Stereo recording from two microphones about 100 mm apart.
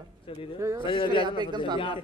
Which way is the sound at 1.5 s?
45° right (ahead or behind).